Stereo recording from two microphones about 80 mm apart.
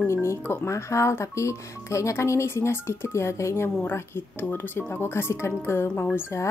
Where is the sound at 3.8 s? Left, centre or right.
Left.